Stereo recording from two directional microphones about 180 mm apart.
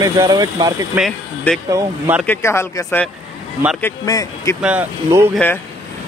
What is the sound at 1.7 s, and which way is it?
Speech, 10° right (ahead or behind).